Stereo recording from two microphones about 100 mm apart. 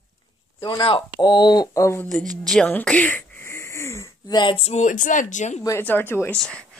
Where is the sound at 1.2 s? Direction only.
45° left (ahead or behind).